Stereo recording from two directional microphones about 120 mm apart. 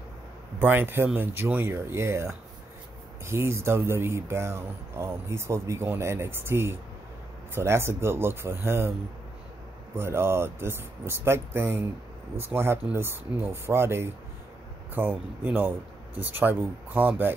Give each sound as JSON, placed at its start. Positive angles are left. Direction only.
{"t": 0.6, "sound": "speech", "side_deg": -15}
{"t": 9.9, "sound": "speech", "side_deg": -20}